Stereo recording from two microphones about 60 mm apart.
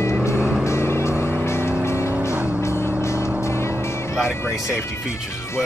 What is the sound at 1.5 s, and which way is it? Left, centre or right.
Vehicle, left.